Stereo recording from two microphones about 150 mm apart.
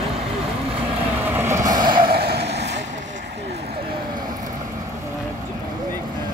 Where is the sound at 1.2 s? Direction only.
15° right (ahead or behind).